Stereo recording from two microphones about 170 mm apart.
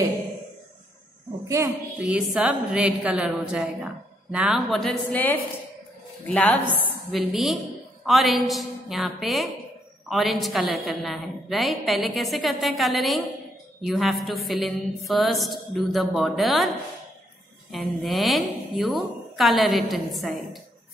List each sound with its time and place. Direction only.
1.5 s speech: 20° right (ahead or behind)
2.0 s a woman's voice: 5° right (ahead or behind)